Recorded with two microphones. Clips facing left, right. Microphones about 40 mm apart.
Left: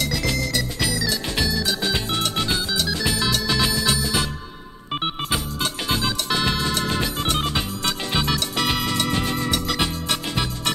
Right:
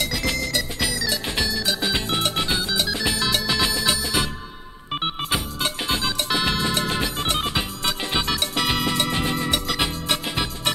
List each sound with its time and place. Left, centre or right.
0.0 s music: centre